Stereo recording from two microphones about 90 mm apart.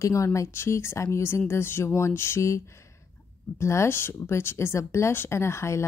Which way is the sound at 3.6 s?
30° left (ahead or behind).